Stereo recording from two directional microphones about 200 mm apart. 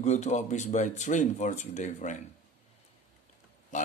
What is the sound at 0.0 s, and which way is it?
Speech, 35° left (ahead or behind).